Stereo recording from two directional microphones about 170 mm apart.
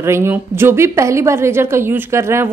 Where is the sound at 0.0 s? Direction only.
15° right (ahead or behind).